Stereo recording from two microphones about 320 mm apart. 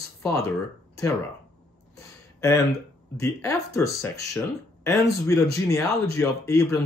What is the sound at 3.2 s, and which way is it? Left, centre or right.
Speech, centre.